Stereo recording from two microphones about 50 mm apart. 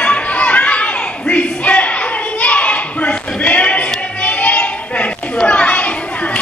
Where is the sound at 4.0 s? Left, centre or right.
Left.